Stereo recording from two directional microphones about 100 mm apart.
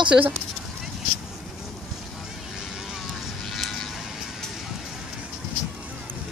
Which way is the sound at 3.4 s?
5° left (ahead or behind).